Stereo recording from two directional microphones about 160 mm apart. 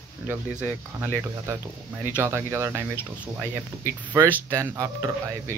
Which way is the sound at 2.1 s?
15° right (ahead or behind).